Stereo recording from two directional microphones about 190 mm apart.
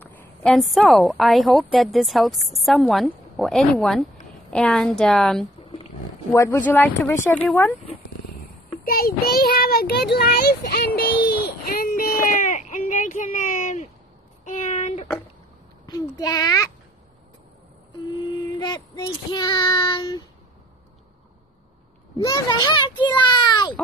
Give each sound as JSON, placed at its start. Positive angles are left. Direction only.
{"t": 0.0, "sound": "a woman's voice", "side_deg": 10}
{"t": 5.6, "sound": "roaring cats", "side_deg": 30}
{"t": 6.3, "sound": "speech", "side_deg": 15}
{"t": 8.8, "sound": "a child's voice", "side_deg": 50}
{"t": 14.4, "sound": "a sound", "side_deg": 40}
{"t": 15.9, "sound": "child singing", "side_deg": 20}
{"t": 18.6, "sound": "child singing", "side_deg": 20}
{"t": 22.2, "sound": "child singing", "side_deg": 20}